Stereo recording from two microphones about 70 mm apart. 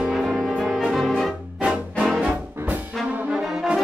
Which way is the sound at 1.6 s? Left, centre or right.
Centre.